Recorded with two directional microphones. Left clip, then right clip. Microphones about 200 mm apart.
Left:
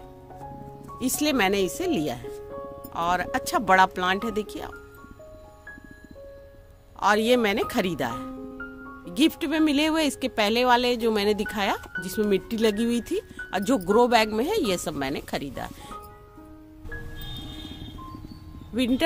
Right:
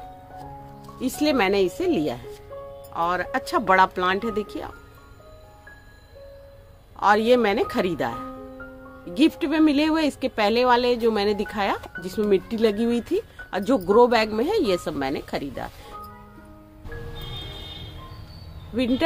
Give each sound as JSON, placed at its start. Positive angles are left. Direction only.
{"t": 0.9, "sound": "speech", "side_deg": 45}
{"t": 7.0, "sound": "speech", "side_deg": 45}